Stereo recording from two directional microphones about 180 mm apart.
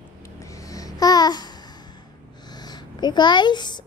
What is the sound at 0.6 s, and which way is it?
Babbling, 20° left (ahead or behind).